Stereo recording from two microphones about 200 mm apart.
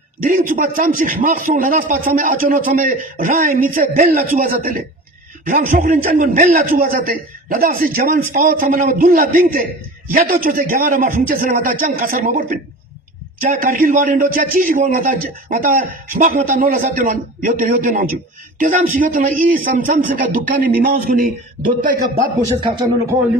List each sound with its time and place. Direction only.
0.2 s a man's voice: 45° right (ahead or behind)